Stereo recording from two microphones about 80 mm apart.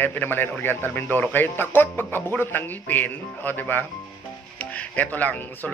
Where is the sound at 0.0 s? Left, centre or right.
Left.